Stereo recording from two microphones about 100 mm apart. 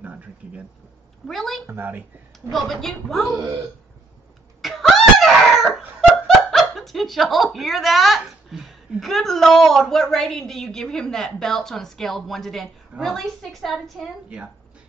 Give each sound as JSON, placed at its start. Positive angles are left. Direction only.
{"t": 0.0, "sound": "a sound", "side_deg": -15}
{"t": 1.2, "sound": "a woman's voice", "side_deg": 0}
{"t": 1.7, "sound": "a woman's voice", "side_deg": -20}
{"t": 2.5, "sound": "a woman's voice", "side_deg": 0}
{"t": 4.6, "sound": "chicken", "side_deg": 0}
{"t": 9.0, "sound": "a woman's voice", "side_deg": 0}